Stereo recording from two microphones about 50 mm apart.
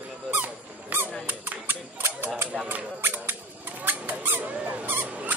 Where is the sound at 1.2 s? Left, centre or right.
Right.